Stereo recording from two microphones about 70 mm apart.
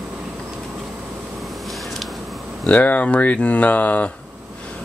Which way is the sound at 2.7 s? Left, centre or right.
Left.